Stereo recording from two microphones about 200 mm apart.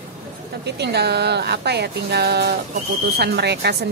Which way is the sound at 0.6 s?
55° right (ahead or behind).